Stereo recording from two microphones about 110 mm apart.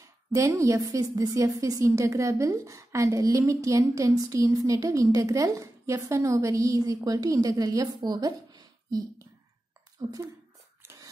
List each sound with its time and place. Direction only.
0.0 s a woman's voice: 30° right (ahead or behind)